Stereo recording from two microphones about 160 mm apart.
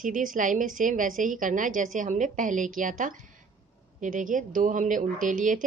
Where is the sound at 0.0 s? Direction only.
55° right (ahead or behind).